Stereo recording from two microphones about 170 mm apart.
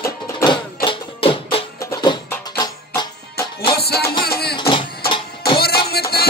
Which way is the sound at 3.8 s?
70° left (ahead or behind).